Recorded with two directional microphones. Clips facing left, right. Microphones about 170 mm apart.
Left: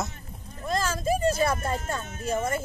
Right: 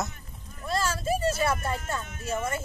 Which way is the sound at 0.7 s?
40° left (ahead or behind).